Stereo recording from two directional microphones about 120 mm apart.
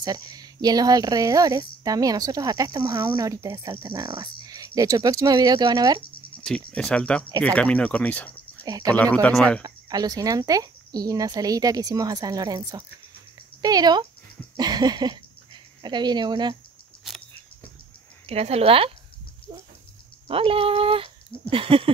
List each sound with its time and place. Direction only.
0.0 s speech: 35° right (ahead or behind)
6.4 s speech: 5° left (ahead or behind)
8.6 s speech: 35° right (ahead or behind)
8.9 s speech: 10° left (ahead or behind)
9.6 s speech: 35° right (ahead or behind)
18.2 s speech: 60° right (ahead or behind)
20.2 s speech: 50° right (ahead or behind)